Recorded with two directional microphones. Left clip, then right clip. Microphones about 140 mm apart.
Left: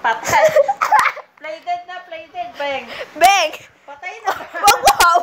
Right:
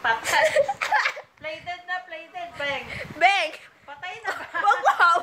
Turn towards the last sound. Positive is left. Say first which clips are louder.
# left 7 dB
turn(degrees=0)  # may be behind; listen again after turning